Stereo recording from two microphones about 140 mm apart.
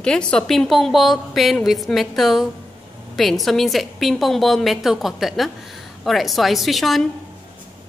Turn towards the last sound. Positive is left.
turn(degrees=0)  # may be behind; listen again after turning